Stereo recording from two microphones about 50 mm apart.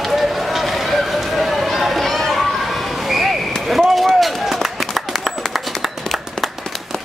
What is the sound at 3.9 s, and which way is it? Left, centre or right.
Run, centre.